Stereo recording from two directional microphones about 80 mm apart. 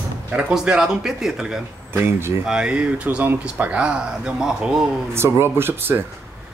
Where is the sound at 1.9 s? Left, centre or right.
Right.